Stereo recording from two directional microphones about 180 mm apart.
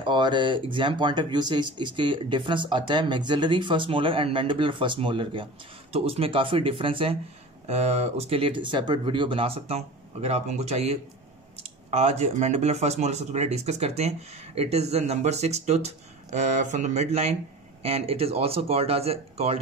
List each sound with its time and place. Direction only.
0.0 s speech: 25° right (ahead or behind)